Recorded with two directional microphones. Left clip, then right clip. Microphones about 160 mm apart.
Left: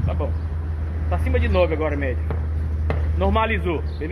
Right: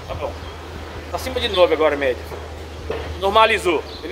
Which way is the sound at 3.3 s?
15° right (ahead or behind).